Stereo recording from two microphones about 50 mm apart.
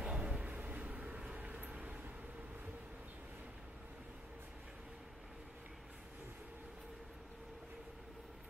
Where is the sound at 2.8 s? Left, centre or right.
Right.